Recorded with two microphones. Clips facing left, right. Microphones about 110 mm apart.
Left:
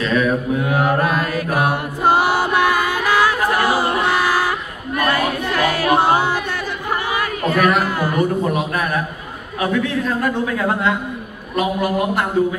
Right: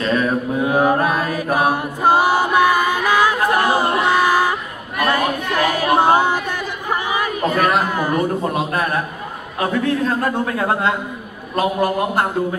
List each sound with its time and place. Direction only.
0.0 s mantra: 35° right (ahead or behind)
0.6 s chant: 20° right (ahead or behind)
4.9 s a sound: 15° right (ahead or behind)
9.6 s a man's voice: 35° right (ahead or behind)